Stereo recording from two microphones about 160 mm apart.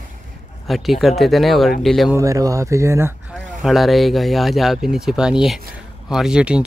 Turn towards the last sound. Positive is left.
turn(degrees=-5)  # may be behind; listen again after turning